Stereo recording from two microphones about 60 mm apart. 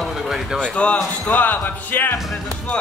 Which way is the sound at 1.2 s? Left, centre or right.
Left.